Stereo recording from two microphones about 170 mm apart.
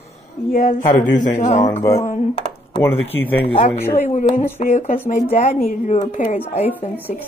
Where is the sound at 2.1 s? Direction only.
40° left (ahead or behind).